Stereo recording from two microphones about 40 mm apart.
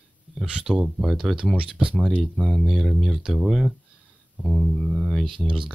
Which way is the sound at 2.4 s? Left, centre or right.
Centre.